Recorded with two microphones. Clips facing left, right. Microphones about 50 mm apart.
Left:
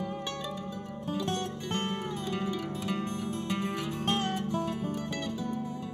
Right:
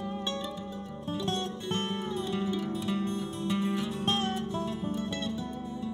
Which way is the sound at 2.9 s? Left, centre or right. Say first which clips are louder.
Right 1 dB; left.